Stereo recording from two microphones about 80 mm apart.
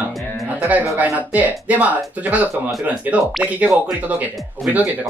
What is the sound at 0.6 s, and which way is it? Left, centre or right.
Speech, centre.